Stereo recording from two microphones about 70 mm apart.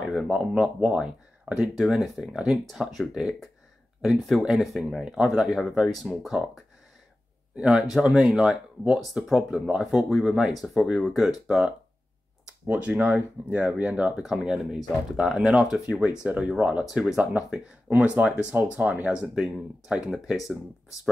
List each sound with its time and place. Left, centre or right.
0.2 s speech: centre
7.5 s speech: centre
12.6 s speech: centre
16.9 s speech: centre
17.2 s speech: centre
17.8 s speech: right
20.1 s speech: centre